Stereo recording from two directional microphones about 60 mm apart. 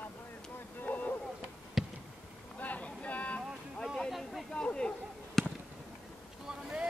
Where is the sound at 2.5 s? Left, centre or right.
Left.